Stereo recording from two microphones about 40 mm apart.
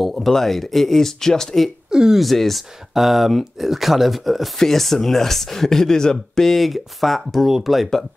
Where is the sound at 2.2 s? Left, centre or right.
Centre.